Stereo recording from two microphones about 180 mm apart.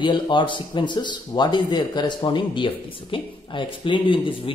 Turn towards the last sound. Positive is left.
turn(degrees=30)  # may be behind; listen again after turning